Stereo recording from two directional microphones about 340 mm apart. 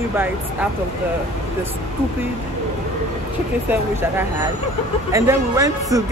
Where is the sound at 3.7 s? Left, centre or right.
Centre.